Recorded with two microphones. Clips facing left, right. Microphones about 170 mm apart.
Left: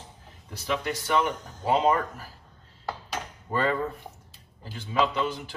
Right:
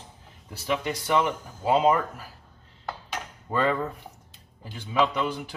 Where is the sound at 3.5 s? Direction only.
10° right (ahead or behind).